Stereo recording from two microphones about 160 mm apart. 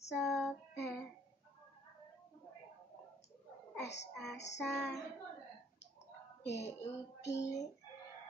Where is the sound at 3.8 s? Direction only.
90° left.